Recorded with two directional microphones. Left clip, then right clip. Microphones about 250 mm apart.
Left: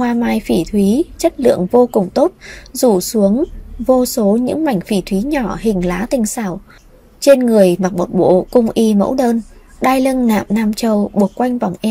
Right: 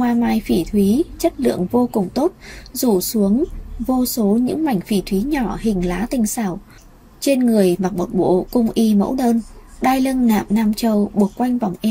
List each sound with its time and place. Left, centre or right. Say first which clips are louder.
0.0 s a woman's voice: left 2 dB; left